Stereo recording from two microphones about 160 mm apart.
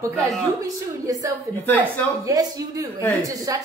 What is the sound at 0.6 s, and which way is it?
A woman's voice, 20° right (ahead or behind).